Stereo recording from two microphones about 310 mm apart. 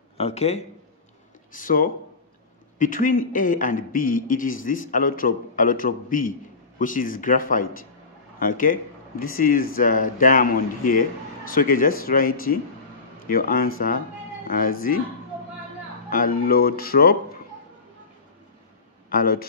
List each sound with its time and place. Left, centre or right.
0.2 s a man's voice: centre
16.1 s a man's voice: left
19.0 s a man's voice: left